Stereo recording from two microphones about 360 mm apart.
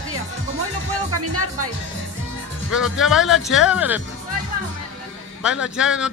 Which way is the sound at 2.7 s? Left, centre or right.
Centre.